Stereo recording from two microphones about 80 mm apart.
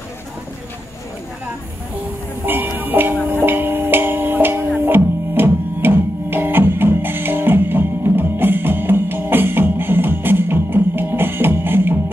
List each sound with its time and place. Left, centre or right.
2.4 s music: right